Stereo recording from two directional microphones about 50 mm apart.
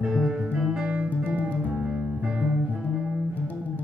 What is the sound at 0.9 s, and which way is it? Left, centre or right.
Music, right.